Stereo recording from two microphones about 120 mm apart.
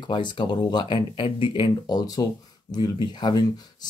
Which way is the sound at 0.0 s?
40° left (ahead or behind).